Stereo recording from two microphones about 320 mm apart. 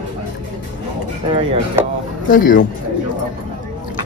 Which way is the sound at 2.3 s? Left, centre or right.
Left.